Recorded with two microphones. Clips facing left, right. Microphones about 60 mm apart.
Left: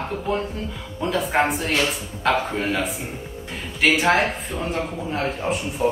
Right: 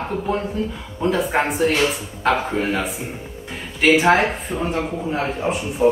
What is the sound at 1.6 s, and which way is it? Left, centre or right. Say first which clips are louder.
Speech: right 4 dB; right.